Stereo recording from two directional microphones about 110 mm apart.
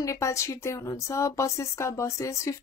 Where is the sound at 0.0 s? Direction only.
30° left (ahead or behind).